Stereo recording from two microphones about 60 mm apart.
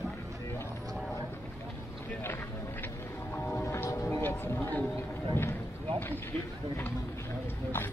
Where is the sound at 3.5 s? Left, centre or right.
Left.